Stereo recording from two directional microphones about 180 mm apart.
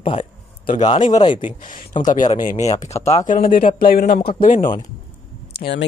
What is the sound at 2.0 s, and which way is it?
Speech, 45° left (ahead or behind).